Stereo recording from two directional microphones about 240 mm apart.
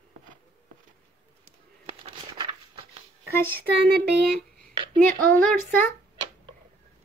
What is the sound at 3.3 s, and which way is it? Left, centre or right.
Speech, centre.